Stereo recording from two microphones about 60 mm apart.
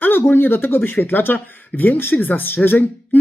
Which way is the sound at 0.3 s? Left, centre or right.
Left.